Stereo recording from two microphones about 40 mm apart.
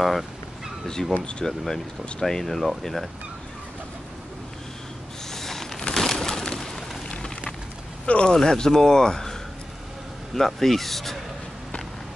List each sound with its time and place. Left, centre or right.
0.0 s speech: centre
5.3 s a sound: centre
5.9 s bird: centre
8.3 s speech: centre